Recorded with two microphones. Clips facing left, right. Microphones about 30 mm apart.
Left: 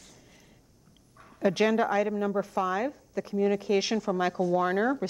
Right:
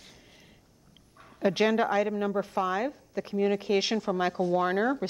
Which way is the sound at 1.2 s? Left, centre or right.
Centre.